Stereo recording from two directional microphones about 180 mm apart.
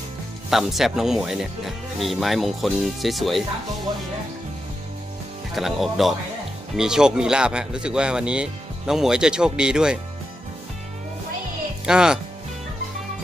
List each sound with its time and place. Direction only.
0.5 s speech: centre (ahead or behind)
5.5 s speech: centre (ahead or behind)
11.8 s speech: 5° right (ahead or behind)